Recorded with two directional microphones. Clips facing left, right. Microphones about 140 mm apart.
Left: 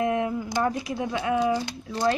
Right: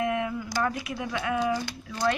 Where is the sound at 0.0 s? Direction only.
30° left (ahead or behind).